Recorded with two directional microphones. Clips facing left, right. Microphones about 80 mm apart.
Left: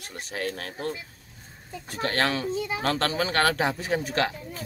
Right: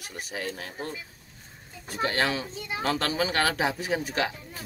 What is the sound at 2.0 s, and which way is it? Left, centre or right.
Speech, left.